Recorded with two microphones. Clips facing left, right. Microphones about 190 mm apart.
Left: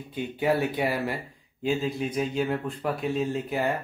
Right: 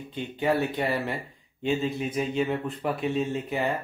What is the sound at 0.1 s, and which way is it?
Speech, 10° left (ahead or behind).